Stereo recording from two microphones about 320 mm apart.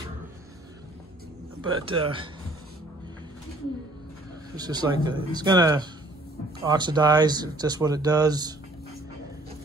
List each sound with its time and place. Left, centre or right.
1.7 s speech: centre
4.6 s speech: centre